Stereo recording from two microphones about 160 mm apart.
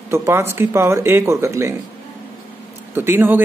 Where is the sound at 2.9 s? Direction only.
15° right (ahead or behind).